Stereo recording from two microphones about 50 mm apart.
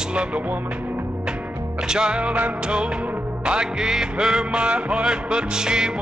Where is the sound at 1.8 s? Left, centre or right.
Centre.